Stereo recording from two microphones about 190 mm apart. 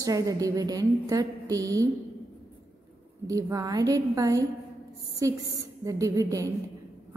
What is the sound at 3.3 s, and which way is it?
A woman's voice, 20° right (ahead or behind).